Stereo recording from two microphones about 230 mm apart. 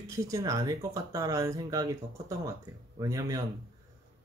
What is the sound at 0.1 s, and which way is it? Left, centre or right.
Speech, centre.